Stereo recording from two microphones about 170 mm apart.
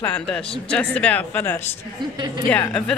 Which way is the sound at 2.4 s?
10° left (ahead or behind).